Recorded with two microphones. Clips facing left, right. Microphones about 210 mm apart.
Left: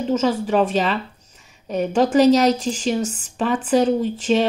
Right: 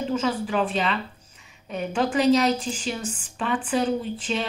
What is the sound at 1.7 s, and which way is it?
A woman's voice, 40° left (ahead or behind).